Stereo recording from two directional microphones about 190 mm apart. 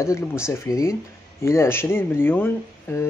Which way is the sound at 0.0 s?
15° left (ahead or behind).